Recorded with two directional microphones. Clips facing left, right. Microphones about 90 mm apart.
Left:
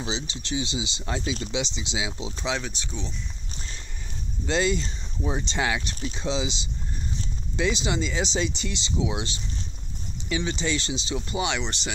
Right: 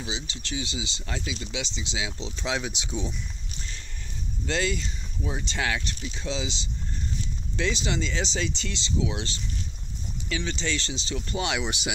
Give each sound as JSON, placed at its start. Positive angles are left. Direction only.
{"t": 0.0, "sound": "speech", "side_deg": 25}
{"t": 2.4, "sound": "speech", "side_deg": -5}
{"t": 2.7, "sound": "speech", "side_deg": -15}
{"t": 4.5, "sound": "speech", "side_deg": 20}
{"t": 11.4, "sound": "speech", "side_deg": -5}